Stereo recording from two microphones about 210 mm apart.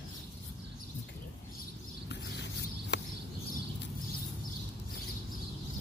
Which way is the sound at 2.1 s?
55° left (ahead or behind).